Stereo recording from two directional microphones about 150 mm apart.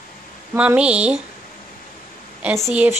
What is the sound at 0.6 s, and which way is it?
Speech, 10° right (ahead or behind).